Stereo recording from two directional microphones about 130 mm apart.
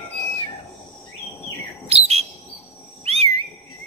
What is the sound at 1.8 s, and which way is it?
Chirp, 50° right (ahead or behind).